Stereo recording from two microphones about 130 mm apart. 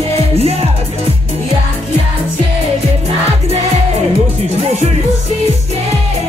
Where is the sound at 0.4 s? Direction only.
50° right (ahead or behind).